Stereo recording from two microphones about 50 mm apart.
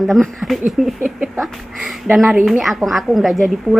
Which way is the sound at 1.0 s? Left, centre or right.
Centre.